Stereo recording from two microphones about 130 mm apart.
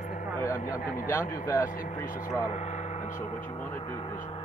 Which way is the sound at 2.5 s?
60° left (ahead or behind).